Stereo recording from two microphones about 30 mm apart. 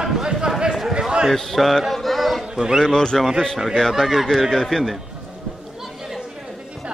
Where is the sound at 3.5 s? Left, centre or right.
Centre.